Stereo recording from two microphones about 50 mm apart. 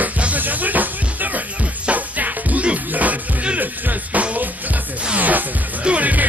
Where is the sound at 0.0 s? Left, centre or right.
Right.